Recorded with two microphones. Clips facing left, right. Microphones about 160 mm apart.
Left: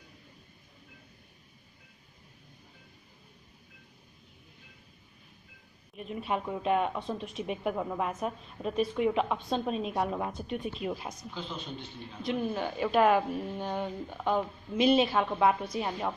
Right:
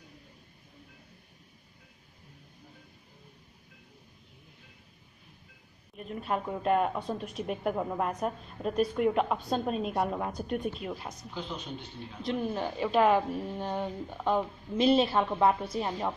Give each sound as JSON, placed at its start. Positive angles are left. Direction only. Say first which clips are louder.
{"t": 5.9, "sound": "speech", "louder": "even", "side_deg": 5}
{"t": 10.3, "sound": "speech", "louder": "right 3 dB", "side_deg": -45}
{"t": 10.6, "sound": "speech", "louder": "even", "side_deg": 5}
{"t": 11.3, "sound": "speech", "louder": "right 3 dB", "side_deg": -15}
{"t": 12.4, "sound": "speech", "louder": "even", "side_deg": 0}